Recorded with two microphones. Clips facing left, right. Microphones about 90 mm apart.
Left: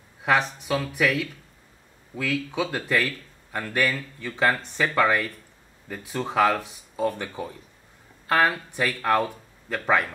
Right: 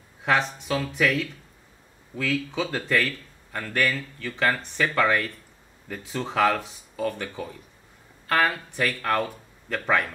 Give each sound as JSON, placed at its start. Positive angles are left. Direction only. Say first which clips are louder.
{"t": 0.2, "sound": "speech", "louder": "left 1 dB", "side_deg": 5}